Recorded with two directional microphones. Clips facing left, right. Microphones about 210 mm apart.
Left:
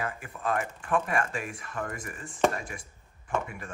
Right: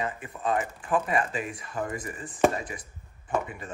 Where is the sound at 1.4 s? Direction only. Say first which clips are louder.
Right 3 dB; 5° right (ahead or behind).